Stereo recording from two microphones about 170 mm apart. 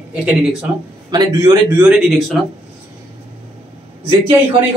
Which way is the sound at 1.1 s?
25° right (ahead or behind).